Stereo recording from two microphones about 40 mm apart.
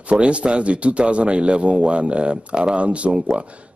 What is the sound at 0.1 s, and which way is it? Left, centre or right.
Speech, right.